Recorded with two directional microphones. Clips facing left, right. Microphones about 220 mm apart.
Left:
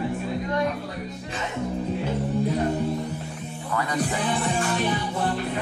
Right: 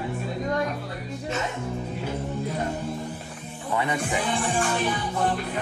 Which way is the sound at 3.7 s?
25° right (ahead or behind).